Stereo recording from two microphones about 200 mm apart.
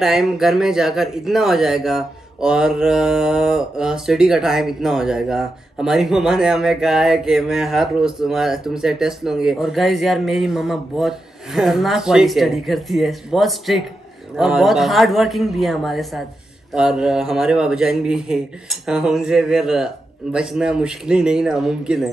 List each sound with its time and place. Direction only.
0.0 s speech: centre (ahead or behind)